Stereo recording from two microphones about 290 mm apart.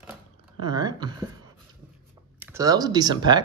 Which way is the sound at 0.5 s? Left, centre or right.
Centre.